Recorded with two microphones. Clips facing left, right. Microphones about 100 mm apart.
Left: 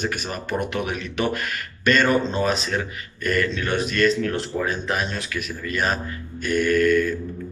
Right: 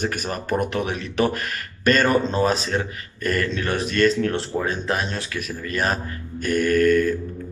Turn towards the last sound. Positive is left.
turn(degrees=-45)  # may be behind; listen again after turning